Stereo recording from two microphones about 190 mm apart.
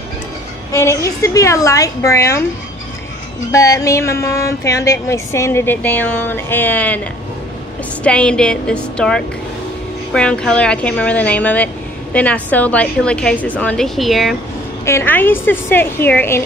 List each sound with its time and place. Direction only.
0.7 s speech: 15° left (ahead or behind)
3.5 s speech: 20° left (ahead or behind)
8.0 s a woman's voice: 5° left (ahead or behind)
14.9 s speech: 10° left (ahead or behind)